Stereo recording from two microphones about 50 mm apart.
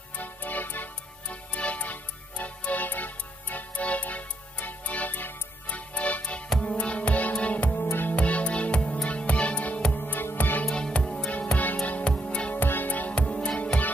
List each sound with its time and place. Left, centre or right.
0.2 s music: left
1.3 s music: left
7.7 s music: left
8.2 s music: left
10.0 s music: left
10.6 s music: centre
12.5 s music: left